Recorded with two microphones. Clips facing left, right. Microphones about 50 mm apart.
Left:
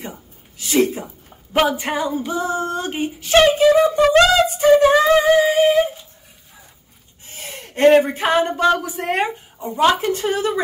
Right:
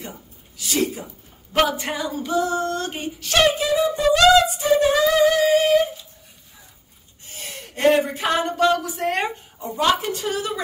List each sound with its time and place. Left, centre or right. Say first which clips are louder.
0.6 s a sound: left 6 dB; left
1.6 s a woman's voice: left 3 dB; left
3.5 s speech: left 7 dB; left
4.9 s a woman's voice: left 4 dB; left
5.5 s humming: left 2 dB; centre
7.7 s a woman's voice: left 5 dB; left; by 9.7 s centre
9.8 s a woman's voice: left 4 dB; left